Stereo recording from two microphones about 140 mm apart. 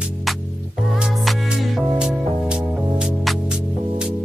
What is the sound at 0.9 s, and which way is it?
Music, centre (ahead or behind).